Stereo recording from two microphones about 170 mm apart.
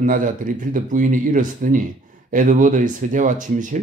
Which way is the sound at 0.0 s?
50° right (ahead or behind).